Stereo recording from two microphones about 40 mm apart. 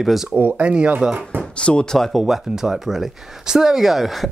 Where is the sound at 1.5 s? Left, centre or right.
Left.